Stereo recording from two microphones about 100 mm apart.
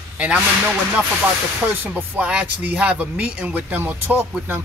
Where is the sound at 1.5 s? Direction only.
15° right (ahead or behind).